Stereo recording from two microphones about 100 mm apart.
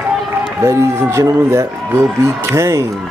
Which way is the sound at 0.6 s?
30° right (ahead or behind).